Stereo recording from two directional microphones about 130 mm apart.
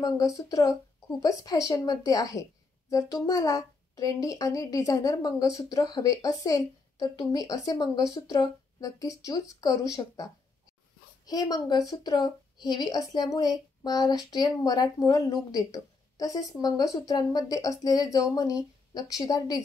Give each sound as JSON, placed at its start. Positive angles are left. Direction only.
{"t": 0.4, "sound": "a child's voice", "side_deg": 30}